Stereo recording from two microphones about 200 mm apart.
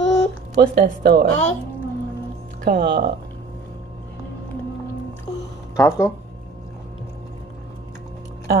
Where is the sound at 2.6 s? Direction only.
55° right (ahead or behind).